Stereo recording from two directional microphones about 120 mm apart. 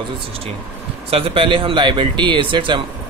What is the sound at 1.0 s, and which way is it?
Speech, 55° right (ahead or behind).